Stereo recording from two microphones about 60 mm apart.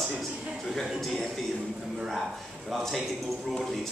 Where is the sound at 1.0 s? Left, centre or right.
Centre.